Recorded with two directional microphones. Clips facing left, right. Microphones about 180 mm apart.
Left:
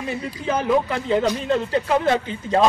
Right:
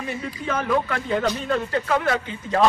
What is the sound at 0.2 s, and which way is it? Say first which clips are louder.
Speech: left 4 dB; 25° left (ahead or behind).